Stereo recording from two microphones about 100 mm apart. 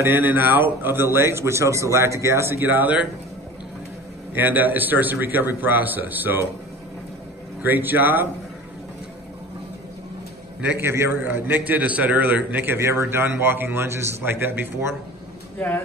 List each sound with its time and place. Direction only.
0.0 s a man's voice: 20° right (ahead or behind)
4.3 s a man's voice: 20° right (ahead or behind)
7.6 s a man's voice: 20° right (ahead or behind)
10.6 s a man's voice: 20° right (ahead or behind)